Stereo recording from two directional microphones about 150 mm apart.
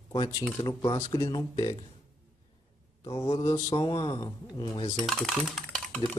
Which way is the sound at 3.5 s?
30° left (ahead or behind).